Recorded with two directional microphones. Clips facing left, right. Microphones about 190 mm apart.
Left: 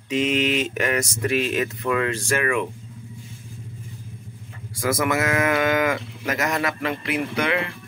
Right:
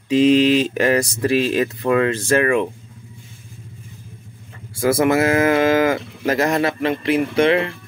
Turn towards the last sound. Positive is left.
turn(degrees=-30)  # may be behind; listen again after turning